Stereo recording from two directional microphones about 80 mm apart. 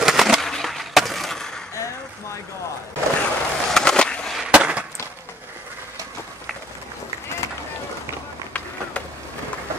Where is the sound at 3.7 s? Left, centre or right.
Centre.